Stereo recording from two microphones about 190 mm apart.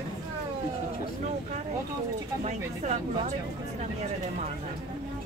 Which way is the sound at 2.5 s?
40° right (ahead or behind).